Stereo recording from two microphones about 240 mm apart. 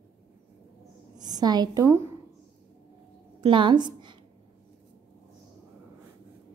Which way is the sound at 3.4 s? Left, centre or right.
Centre.